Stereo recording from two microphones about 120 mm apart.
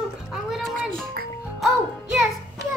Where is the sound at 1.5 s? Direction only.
Centre (ahead or behind).